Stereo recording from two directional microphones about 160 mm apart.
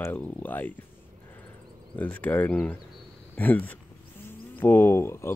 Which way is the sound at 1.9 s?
10° left (ahead or behind).